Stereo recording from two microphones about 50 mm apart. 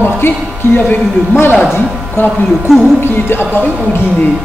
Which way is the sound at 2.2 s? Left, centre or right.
Left.